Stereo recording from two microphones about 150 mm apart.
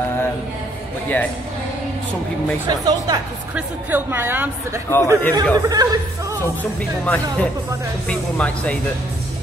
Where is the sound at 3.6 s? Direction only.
10° right (ahead or behind).